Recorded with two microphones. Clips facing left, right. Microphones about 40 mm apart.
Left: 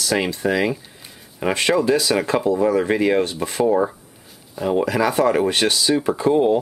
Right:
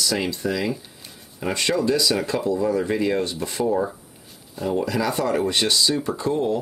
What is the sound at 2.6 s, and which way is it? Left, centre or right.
Speech, left.